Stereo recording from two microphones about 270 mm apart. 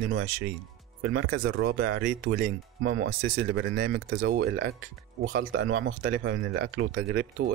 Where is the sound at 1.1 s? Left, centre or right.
Right.